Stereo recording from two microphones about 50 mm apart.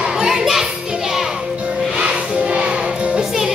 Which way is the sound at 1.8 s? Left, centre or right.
Centre.